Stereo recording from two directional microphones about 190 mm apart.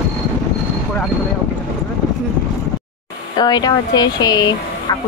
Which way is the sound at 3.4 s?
20° left (ahead or behind).